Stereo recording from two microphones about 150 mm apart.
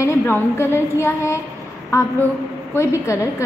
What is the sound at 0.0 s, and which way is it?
A woman's voice, 15° left (ahead or behind).